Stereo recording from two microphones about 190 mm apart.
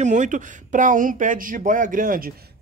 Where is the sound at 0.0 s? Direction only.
40° right (ahead or behind).